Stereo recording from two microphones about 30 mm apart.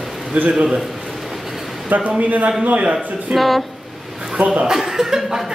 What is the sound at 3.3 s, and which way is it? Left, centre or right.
Speech, centre.